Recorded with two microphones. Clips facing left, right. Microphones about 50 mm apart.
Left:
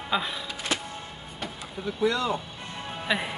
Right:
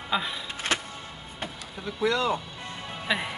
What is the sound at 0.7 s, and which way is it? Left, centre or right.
Music, right.